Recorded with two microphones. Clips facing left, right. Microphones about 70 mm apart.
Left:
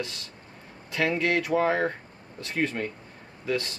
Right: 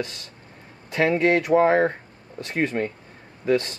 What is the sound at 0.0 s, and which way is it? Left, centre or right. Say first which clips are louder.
Speech: right 4 dB; right.